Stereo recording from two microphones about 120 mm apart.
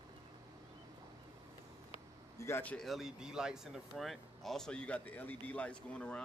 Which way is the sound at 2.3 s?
25° left (ahead or behind).